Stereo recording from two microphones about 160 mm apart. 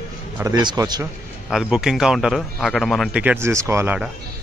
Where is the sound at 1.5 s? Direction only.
5° right (ahead or behind).